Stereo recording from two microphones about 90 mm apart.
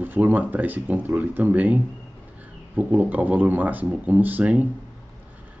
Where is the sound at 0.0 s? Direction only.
20° right (ahead or behind).